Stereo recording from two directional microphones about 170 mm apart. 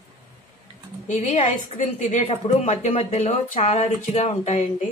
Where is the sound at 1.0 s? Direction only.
45° left (ahead or behind).